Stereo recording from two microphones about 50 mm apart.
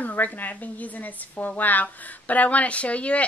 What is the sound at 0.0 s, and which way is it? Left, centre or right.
Speech, left.